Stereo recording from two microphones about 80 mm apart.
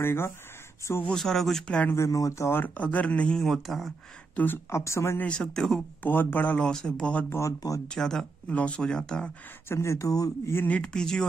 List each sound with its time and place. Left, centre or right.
0.0 s speech: left
1.0 s speech: centre
2.0 s speech: left
2.6 s speech: centre
3.4 s speech: centre
4.6 s speech: left
5.2 s speech: centre
6.0 s speech: left
6.6 s speech: centre
7.2 s speech: left
7.9 s speech: centre
9.7 s speech: left
10.7 s speech: centre